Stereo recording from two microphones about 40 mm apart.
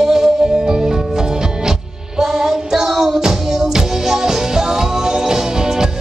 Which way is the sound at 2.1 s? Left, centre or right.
Centre.